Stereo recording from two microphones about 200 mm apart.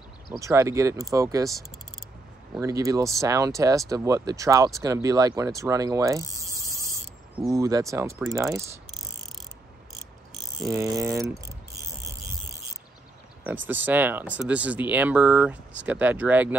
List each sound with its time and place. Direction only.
0.4 s speech: 15° right (ahead or behind)
2.5 s speech: 15° right (ahead or behind)
7.5 s speech: 15° right (ahead or behind)
10.6 s a sound: 15° right (ahead or behind)
13.4 s speech: 10° right (ahead or behind)